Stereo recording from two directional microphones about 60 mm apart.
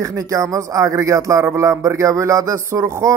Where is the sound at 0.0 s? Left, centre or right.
Right.